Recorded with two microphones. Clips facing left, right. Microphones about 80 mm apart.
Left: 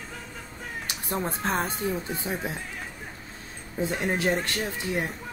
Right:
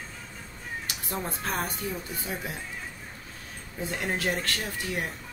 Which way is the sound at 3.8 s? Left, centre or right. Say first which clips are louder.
Left 4 dB; left.